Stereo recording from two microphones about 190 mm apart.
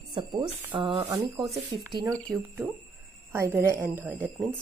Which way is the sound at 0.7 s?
25° right (ahead or behind).